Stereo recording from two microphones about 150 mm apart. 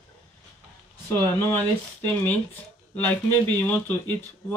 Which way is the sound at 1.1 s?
15° left (ahead or behind).